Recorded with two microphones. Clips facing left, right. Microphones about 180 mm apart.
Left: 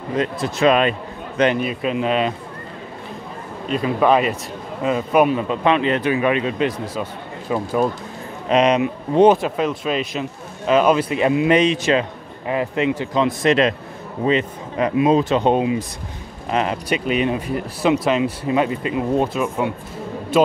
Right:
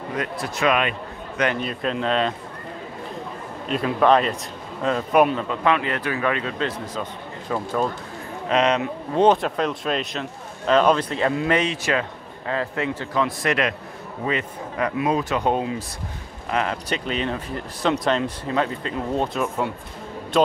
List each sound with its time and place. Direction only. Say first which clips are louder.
0.1 s a man's voice: left 7 dB; 25° left (ahead or behind)
1.6 s speech: left 4 dB; 5° left (ahead or behind)
3.6 s speech: left 2 dB; centre (ahead or behind)
5.4 s speech: left 4 dB; 20° left (ahead or behind)
9.4 s a man's voice: left 3 dB; 5° left (ahead or behind)